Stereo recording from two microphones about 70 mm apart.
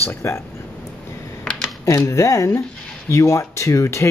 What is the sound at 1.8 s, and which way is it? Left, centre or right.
Speech, left.